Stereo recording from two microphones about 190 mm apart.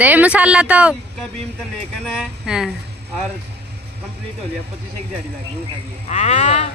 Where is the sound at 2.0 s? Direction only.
5° right (ahead or behind).